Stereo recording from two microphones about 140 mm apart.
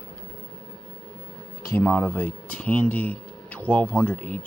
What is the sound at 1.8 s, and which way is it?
Speech, 10° left (ahead or behind).